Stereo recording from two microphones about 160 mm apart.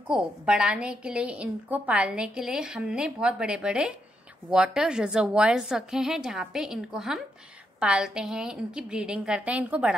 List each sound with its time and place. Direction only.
0.1 s a woman's voice: 5° right (ahead or behind)